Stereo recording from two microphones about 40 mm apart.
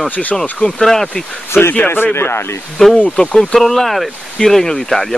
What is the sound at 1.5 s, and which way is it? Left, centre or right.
Speech, left.